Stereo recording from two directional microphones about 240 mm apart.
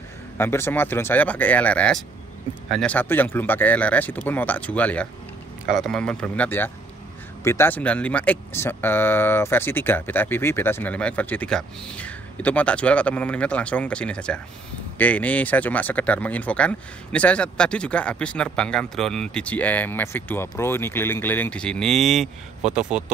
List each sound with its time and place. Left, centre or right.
0.4 s speech: centre